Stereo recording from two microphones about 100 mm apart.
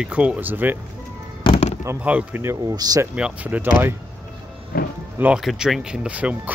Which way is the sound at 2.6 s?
40° right (ahead or behind).